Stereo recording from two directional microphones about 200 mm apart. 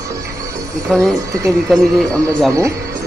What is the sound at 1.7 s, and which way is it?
Speech, centre (ahead or behind).